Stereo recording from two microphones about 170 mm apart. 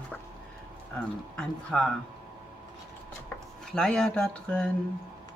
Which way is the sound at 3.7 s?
5° left (ahead or behind).